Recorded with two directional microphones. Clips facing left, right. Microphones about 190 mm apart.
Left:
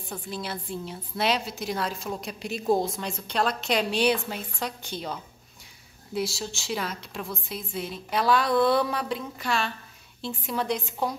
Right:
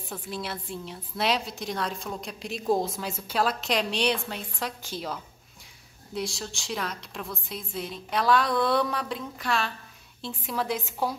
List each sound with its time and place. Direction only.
0.1 s a woman's voice: centre (ahead or behind)